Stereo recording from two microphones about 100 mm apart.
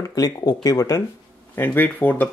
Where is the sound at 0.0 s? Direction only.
40° left (ahead or behind).